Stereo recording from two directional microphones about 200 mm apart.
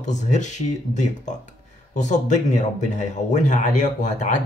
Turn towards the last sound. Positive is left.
turn(degrees=40)  # may be behind; listen again after turning